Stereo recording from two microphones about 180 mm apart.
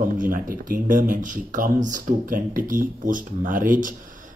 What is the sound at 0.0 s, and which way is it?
Speech, 50° right (ahead or behind).